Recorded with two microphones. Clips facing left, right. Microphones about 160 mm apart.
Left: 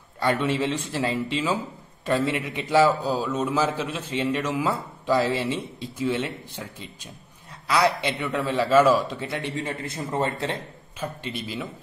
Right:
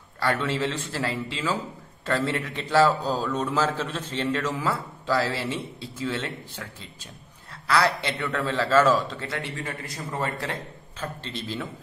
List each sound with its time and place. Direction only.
0.2 s a man's voice: 15° left (ahead or behind)
11.0 s a man's voice: 10° left (ahead or behind)